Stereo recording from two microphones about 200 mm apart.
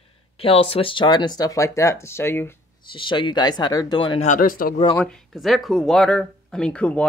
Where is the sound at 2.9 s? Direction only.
25° left (ahead or behind).